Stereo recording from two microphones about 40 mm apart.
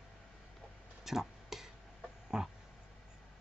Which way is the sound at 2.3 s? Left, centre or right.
Centre.